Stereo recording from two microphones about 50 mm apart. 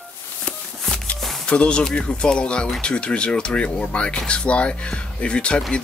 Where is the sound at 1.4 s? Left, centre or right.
Left.